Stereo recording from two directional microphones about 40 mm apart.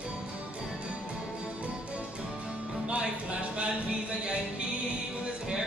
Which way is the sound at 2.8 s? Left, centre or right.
Right.